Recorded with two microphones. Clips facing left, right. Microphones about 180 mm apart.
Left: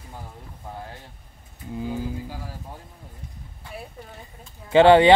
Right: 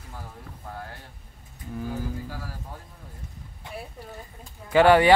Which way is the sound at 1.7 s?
20° left (ahead or behind).